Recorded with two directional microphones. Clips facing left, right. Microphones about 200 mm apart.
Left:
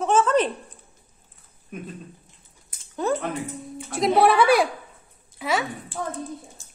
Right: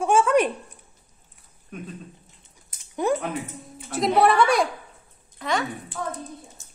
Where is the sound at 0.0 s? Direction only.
10° right (ahead or behind).